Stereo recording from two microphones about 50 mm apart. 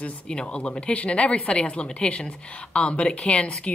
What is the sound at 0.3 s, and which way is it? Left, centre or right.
A woman's voice, centre.